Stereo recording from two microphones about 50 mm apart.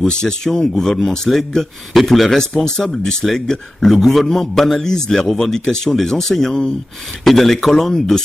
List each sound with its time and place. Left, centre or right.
0.0 s a man's voice: centre